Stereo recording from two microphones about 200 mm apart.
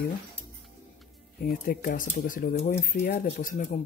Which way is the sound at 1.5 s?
45° left (ahead or behind).